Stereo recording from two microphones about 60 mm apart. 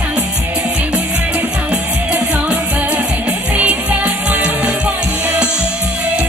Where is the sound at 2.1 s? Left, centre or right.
Right.